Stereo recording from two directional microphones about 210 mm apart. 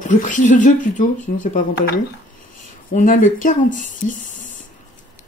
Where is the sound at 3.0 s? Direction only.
40° left (ahead or behind).